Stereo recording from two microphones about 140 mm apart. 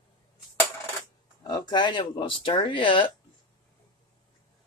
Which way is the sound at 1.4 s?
30° left (ahead or behind).